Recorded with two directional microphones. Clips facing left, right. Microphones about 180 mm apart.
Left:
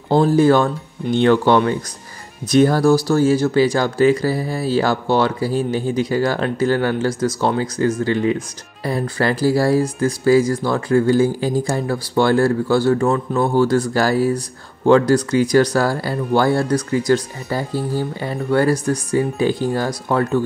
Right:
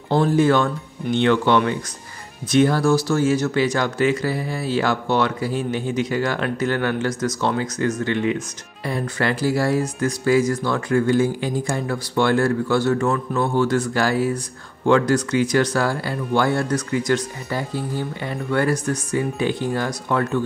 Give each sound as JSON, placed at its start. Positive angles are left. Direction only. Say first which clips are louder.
{"t": 0.1, "sound": "speech", "louder": "left 4 dB", "side_deg": 35}